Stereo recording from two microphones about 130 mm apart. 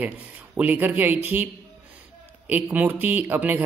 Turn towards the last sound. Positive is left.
turn(degrees=-15)  # may be behind; listen again after turning